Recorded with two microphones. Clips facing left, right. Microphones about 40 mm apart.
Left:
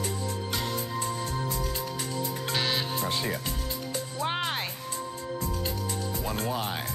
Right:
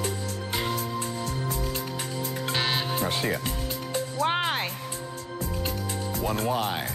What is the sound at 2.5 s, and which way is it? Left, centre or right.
Music, right.